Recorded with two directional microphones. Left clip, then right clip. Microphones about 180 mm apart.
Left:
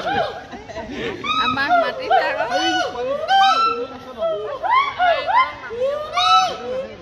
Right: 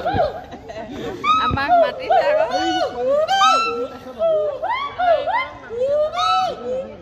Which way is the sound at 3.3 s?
35° right (ahead or behind).